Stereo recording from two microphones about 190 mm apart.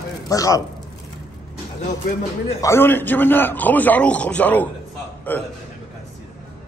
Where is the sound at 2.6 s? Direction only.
15° left (ahead or behind).